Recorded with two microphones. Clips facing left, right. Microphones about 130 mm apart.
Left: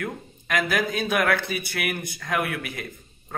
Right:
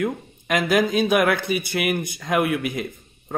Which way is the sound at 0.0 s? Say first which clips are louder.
Right 7 dB; 20° right (ahead or behind).